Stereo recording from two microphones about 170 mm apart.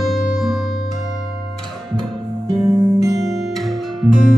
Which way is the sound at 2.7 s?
20° right (ahead or behind).